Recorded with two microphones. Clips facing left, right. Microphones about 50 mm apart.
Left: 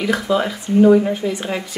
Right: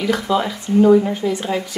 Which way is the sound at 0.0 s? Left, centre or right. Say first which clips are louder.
Even; centre.